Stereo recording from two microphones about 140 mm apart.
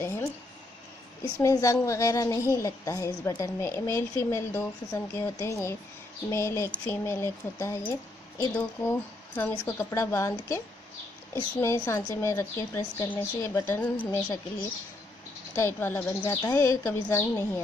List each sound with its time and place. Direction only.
0.0 s a sound: 20° left (ahead or behind)
1.4 s a woman's voice: 20° left (ahead or behind)
15.5 s a woman's voice: 15° left (ahead or behind)